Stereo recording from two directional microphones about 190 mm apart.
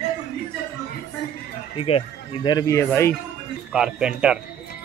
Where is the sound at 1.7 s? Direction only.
30° left (ahead or behind); by 3.1 s 15° left (ahead or behind).